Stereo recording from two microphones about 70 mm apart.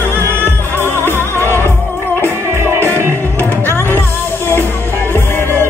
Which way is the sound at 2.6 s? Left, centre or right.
Right.